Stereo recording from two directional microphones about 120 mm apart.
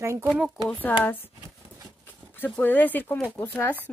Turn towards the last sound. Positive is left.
turn(degrees=15)  # may be behind; listen again after turning